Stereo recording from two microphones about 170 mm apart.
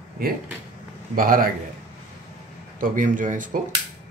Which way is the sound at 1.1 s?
55° right (ahead or behind).